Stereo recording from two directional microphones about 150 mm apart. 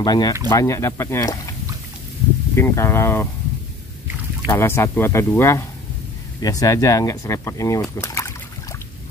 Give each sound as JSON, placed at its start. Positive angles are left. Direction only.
{"t": 0.0, "sound": "speech", "side_deg": 25}
{"t": 2.5, "sound": "speech", "side_deg": 20}
{"t": 4.5, "sound": "speech", "side_deg": 15}